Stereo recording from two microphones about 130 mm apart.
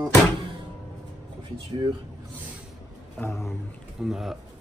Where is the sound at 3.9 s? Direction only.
Centre (ahead or behind).